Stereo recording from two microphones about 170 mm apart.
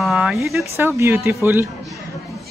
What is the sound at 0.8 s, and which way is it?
Speech, 15° right (ahead or behind).